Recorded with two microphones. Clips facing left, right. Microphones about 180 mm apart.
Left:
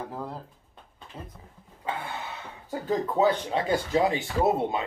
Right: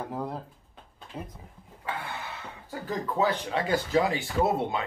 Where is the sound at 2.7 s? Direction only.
25° left (ahead or behind).